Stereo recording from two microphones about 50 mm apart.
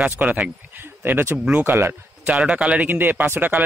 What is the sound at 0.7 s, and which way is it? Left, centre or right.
A man's voice, right.